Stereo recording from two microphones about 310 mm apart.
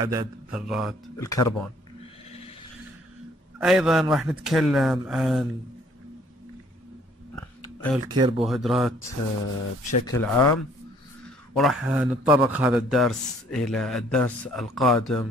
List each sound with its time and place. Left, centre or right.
0.0 s speech: centre
0.5 s a man's voice: centre
1.1 s speech: centre
2.2 s a sound: centre
3.5 s a man's voice: centre
7.6 s a sound: centre
8.1 s speech: centre
8.4 s a man's voice: centre
10.0 s a man's voice: centre